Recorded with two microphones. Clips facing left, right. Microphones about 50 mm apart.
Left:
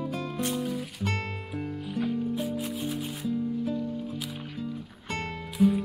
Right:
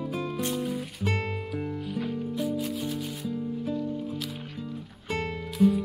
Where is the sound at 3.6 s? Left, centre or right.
Centre.